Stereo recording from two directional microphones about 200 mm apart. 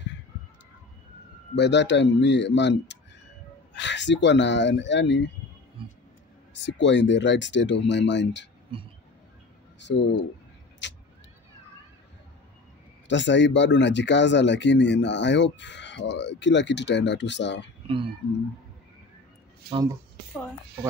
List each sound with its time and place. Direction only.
1.5 s speech: 60° left (ahead or behind)
5.8 s vehicle: 25° right (ahead or behind)
6.5 s speech: 65° left (ahead or behind)
8.7 s a sound: 25° right (ahead or behind)
10.8 s vehicle: 65° left (ahead or behind)
13.1 s speech: 65° left (ahead or behind)
17.8 s speech: 25° right (ahead or behind)
19.7 s speech: 20° right (ahead or behind)